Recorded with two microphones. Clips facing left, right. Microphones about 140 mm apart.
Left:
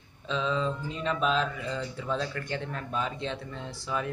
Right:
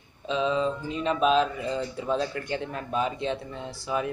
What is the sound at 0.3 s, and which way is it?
Speech, 15° right (ahead or behind).